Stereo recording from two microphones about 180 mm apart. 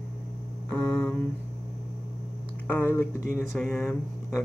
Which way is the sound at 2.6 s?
10° left (ahead or behind).